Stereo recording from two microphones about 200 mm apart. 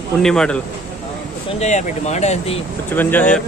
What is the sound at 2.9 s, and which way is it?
Speech, 10° left (ahead or behind).